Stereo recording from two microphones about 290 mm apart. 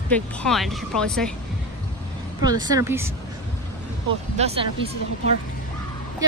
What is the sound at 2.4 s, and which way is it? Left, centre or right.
Speech, centre.